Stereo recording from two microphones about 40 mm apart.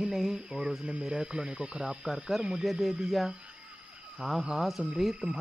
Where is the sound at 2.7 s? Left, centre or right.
Centre.